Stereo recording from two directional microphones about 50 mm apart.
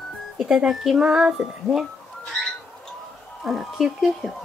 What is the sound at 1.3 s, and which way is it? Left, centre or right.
Speech, centre.